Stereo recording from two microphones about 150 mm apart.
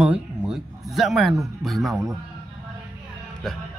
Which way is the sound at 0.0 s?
5° right (ahead or behind).